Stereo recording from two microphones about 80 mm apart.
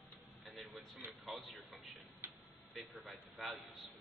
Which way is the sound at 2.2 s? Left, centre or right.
Right.